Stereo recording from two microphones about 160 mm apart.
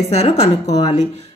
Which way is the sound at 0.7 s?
30° left (ahead or behind).